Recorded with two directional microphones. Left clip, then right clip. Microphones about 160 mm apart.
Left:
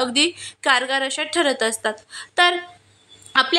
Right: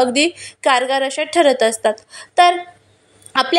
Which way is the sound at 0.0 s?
10° right (ahead or behind).